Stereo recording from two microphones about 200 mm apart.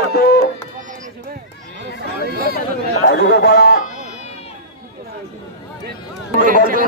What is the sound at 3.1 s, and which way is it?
Speech, 55° left (ahead or behind).